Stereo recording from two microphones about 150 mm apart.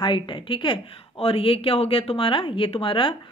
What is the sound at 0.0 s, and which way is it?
A woman's voice, 30° left (ahead or behind).